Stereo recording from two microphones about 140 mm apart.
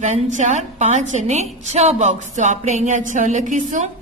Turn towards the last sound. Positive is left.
turn(degrees=-65)  # may be behind; listen again after turning